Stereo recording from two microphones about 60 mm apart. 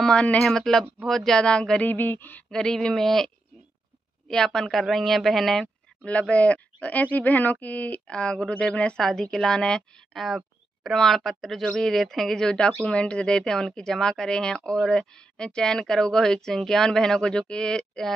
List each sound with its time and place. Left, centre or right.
0.0 s speech: centre
1.9 s a sound: left
2.5 s speech: centre
4.3 s speech: centre
6.0 s speech: left
10.1 s speech: centre